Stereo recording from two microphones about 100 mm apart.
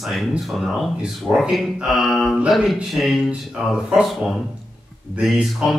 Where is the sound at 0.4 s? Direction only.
Centre (ahead or behind).